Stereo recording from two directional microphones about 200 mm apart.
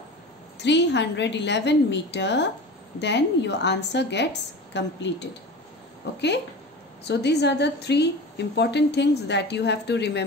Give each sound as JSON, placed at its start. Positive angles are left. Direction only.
{"t": 0.6, "sound": "a woman's voice", "side_deg": 60}